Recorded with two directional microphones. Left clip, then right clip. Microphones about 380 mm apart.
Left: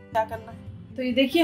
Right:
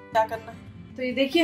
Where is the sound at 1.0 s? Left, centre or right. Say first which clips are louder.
Left 2 dB; left.